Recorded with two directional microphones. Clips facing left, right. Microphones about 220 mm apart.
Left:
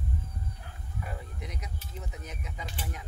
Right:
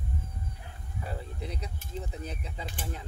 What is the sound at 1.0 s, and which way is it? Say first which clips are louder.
Speech: right 4 dB; 30° right (ahead or behind).